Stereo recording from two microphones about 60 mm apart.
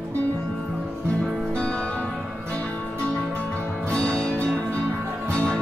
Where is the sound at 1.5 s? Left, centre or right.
Centre.